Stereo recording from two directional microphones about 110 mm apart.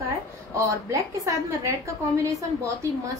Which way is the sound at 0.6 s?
30° right (ahead or behind).